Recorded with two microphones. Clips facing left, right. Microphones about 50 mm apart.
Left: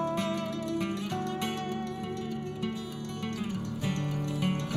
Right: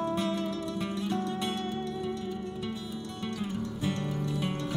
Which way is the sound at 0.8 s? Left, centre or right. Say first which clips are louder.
Right 1 dB; left.